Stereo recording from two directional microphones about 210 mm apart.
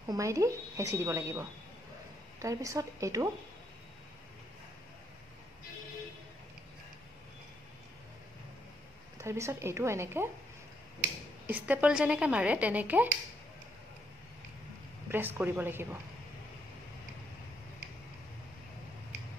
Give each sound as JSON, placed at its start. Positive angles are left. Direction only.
{"t": 0.1, "sound": "speech", "side_deg": -15}
{"t": 2.4, "sound": "speech", "side_deg": -15}
{"t": 9.2, "sound": "speech", "side_deg": -15}
{"t": 11.4, "sound": "speech", "side_deg": -5}
{"t": 15.0, "sound": "speech", "side_deg": -10}